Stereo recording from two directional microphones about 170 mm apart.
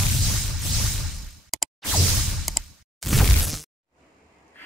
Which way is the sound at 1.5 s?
Centre (ahead or behind).